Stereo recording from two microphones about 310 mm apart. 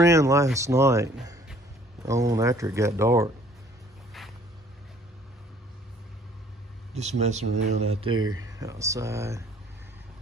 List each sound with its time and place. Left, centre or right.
0.0 s speech: centre
6.9 s speech: right
8.1 s speech: right
8.5 s speech: centre